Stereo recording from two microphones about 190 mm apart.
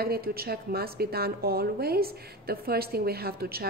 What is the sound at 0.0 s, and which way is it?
A woman's voice, 55° right (ahead or behind).